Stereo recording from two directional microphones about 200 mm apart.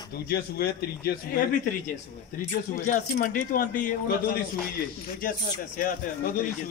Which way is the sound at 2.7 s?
40° left (ahead or behind).